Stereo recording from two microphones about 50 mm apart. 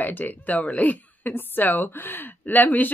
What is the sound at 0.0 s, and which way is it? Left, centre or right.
A woman's voice, left.